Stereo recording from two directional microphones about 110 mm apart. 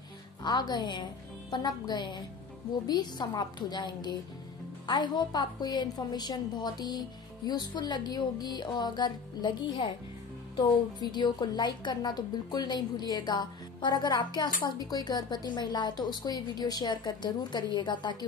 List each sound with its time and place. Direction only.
0.4 s a woman's voice: 40° left (ahead or behind)